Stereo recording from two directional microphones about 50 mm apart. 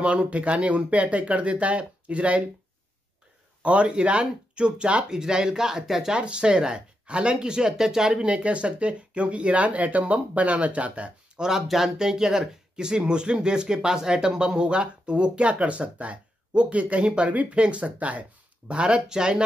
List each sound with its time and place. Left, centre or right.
0.0 s speech: right
3.6 s speech: right
6.1 s speech: right
11.4 s speech: centre